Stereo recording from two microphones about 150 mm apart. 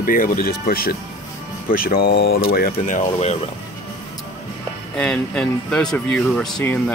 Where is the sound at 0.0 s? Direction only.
70° left (ahead or behind).